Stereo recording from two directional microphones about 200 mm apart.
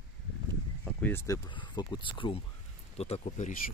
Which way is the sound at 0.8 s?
10° left (ahead or behind).